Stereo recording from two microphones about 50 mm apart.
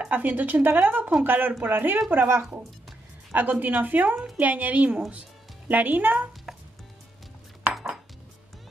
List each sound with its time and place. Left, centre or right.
0.1 s speech: right